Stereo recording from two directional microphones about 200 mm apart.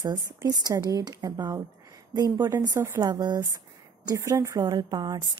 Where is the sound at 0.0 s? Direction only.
20° right (ahead or behind).